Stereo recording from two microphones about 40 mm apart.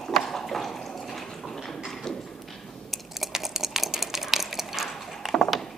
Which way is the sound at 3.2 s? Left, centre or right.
Centre.